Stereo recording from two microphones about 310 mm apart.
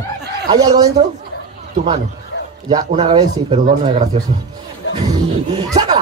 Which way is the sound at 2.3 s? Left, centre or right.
Left.